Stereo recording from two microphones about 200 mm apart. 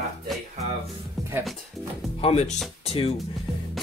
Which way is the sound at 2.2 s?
35° left (ahead or behind).